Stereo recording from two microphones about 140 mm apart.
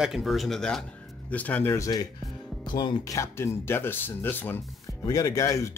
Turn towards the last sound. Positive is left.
turn(degrees=20)  # may be behind; listen again after turning